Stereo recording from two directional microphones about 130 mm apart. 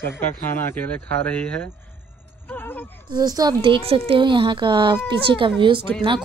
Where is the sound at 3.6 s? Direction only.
45° right (ahead or behind).